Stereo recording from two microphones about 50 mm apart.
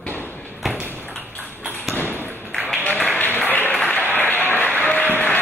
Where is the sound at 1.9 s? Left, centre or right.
Left.